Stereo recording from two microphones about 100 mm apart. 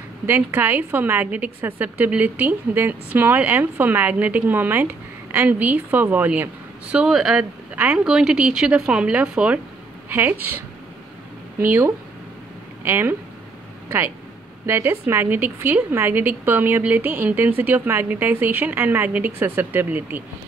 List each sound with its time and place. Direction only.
0.3 s a woman's voice: 20° right (ahead or behind); by 7.4 s 5° right (ahead or behind)
7.7 s a woman's voice: 15° right (ahead or behind)
10.0 s a woman's voice: 20° right (ahead or behind)
11.5 s speech: 20° right (ahead or behind)
14.7 s a woman's voice: 25° right (ahead or behind)